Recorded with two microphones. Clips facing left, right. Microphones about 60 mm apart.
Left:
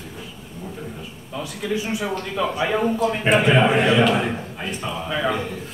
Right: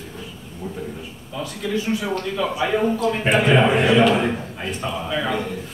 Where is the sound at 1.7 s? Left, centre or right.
Centre.